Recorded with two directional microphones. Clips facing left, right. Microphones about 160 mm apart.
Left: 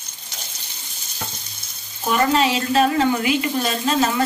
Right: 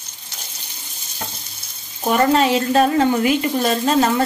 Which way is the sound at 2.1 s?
45° right (ahead or behind).